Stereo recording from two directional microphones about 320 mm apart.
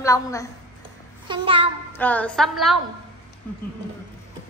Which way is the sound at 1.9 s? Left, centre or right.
Centre.